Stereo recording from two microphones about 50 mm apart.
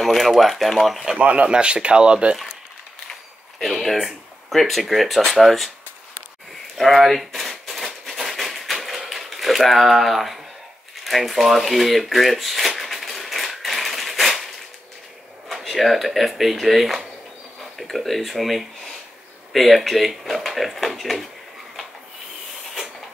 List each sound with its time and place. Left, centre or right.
0.0 s speech: centre
1.1 s speech: right
3.8 s speech: centre
6.8 s a sound: centre
15.4 s speech: centre